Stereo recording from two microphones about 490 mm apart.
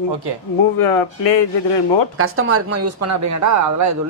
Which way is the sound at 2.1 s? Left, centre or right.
Right.